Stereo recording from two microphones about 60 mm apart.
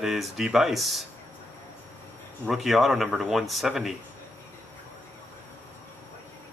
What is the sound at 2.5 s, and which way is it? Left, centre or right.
Speech, centre.